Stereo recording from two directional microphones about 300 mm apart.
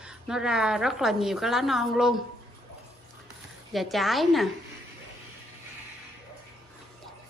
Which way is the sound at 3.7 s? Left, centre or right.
Centre.